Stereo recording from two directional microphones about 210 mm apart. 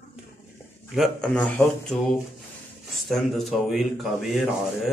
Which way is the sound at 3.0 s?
Centre (ahead or behind).